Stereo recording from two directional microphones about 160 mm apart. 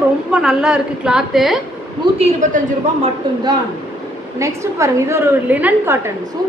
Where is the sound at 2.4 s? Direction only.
50° right (ahead or behind).